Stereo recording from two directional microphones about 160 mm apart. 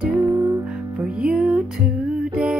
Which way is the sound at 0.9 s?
5° right (ahead or behind).